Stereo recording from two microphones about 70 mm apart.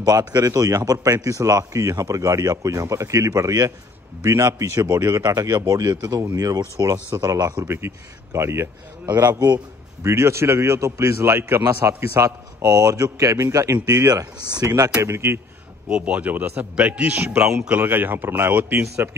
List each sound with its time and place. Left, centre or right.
0.0 s a man's voice: right
0.5 s speech: right
6.3 s speech: right
7.6 s a man's voice: right
9.0 s a man's voice: right
10.0 s a man's voice: right
12.6 s speech: right
13.8 s a man's voice: right
14.1 s speech: right
15.0 s a man's voice: right
15.9 s a man's voice: centre; by 19.0 s right